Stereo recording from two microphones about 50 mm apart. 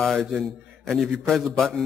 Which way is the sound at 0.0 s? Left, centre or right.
Centre.